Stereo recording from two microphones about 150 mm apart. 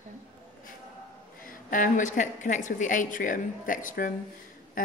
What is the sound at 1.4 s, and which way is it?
A woman's voice, 65° left (ahead or behind).